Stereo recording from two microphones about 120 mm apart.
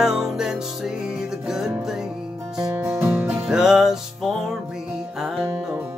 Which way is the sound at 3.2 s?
5° right (ahead or behind).